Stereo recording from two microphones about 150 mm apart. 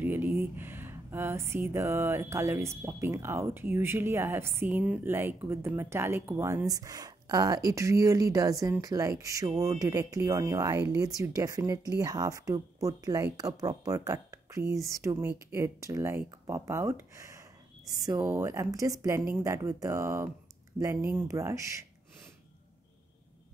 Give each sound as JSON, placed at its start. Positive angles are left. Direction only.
{"t": 0.0, "sound": "speech", "side_deg": -15}